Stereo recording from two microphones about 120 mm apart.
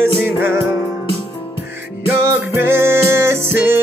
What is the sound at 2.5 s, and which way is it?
Music, 20° right (ahead or behind).